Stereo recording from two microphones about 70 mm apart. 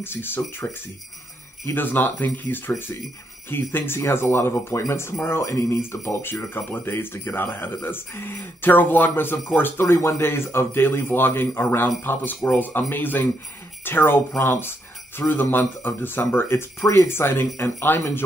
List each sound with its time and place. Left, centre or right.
0.0 s speech: left
1.7 s speech: left